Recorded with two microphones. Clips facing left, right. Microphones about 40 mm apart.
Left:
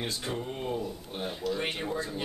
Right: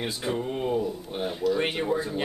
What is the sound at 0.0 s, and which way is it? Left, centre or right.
Speech, centre.